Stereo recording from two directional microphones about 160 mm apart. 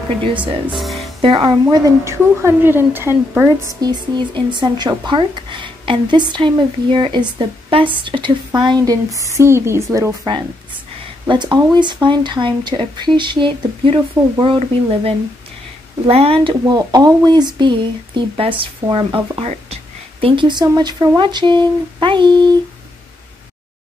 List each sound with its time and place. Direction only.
0.2 s speech: 30° right (ahead or behind)
0.7 s music: centre (ahead or behind)
1.2 s speech: 30° right (ahead or behind)
2.0 s a woman's voice: 15° right (ahead or behind); by 14.6 s 30° right (ahead or behind)
16.1 s a woman's voice: 35° right (ahead or behind)